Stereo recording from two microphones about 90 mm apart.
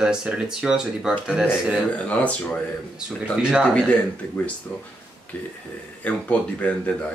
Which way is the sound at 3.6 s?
15° left (ahead or behind).